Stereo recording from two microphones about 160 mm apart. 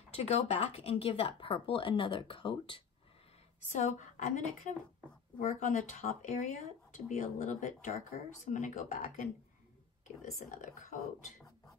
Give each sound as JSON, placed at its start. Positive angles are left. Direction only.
{"t": 0.1, "sound": "speech", "side_deg": 40}
{"t": 3.6, "sound": "speech", "side_deg": 50}